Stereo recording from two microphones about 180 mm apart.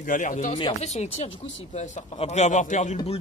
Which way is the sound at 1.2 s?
90° left.